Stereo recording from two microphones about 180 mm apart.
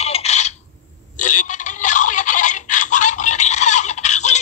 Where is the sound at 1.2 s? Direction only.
45° left (ahead or behind).